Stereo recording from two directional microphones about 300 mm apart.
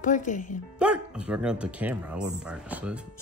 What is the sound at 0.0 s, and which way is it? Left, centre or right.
Speech, left.